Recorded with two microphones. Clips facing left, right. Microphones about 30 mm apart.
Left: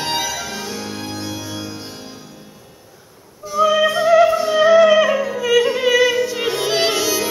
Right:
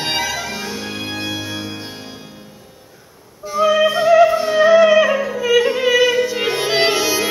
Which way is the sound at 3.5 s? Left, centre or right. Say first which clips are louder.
Right 1 dB; right.